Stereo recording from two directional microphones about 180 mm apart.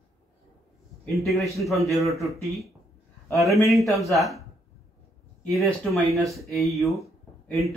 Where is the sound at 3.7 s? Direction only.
Centre (ahead or behind).